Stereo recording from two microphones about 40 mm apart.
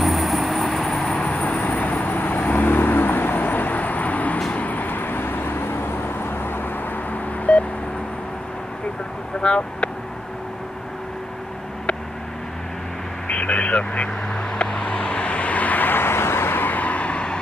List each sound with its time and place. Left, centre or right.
0.0 s vehicle: centre
1.1 s vehicle: left
7.5 s a sound: left
9.4 s speech: left
13.3 s vehicle: left
16.6 s vehicle: left